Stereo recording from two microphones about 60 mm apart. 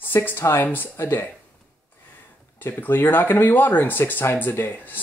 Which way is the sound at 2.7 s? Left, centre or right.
Left.